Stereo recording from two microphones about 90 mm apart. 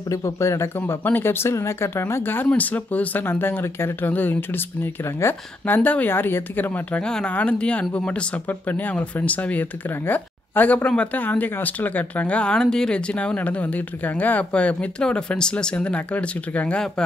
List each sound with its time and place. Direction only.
0.1 s speech: 35° left (ahead or behind)
5.8 s speech: 15° left (ahead or behind)